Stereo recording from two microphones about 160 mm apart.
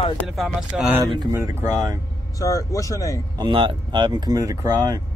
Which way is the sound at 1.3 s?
20° right (ahead or behind).